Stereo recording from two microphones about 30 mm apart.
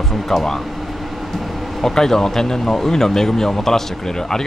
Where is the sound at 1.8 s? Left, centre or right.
Centre.